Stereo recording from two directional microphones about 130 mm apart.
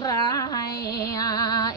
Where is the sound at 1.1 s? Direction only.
30° left (ahead or behind).